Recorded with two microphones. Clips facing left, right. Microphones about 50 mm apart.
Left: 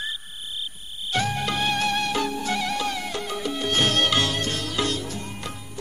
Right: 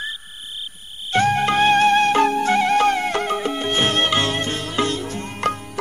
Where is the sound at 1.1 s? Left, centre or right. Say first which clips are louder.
Right 8 dB; right.